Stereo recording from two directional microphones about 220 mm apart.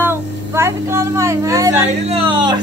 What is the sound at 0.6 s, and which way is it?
Speech, 10° right (ahead or behind).